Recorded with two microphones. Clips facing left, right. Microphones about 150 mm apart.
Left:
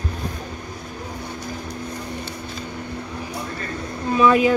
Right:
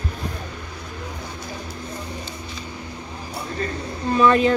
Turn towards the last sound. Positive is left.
turn(degrees=5)  # may be behind; listen again after turning